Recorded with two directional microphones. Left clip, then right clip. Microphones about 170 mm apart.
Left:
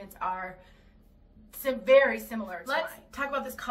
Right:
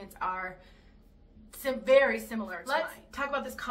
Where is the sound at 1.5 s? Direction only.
10° right (ahead or behind).